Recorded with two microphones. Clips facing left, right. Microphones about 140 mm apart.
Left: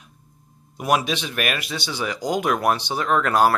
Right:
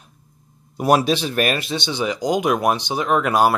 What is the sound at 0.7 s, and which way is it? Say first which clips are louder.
Speech: right 5 dB; 35° right (ahead or behind).